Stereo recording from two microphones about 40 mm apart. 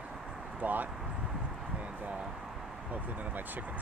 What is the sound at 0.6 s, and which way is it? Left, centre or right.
Speech, right.